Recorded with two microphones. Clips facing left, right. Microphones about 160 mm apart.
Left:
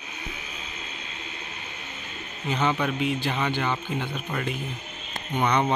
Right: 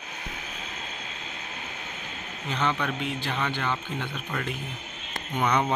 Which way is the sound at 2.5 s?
10° left (ahead or behind).